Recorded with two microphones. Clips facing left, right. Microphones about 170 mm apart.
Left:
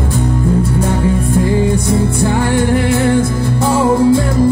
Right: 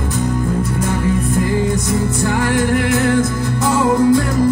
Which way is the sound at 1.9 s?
30° left (ahead or behind).